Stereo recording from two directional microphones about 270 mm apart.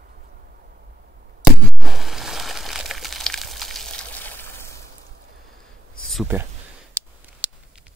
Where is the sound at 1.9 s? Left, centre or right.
Centre.